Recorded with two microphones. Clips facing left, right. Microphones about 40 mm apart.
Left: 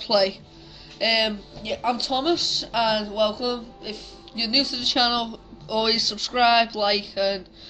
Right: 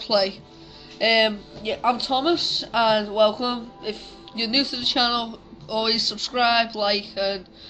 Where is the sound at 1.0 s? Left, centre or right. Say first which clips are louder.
Right 3 dB; centre.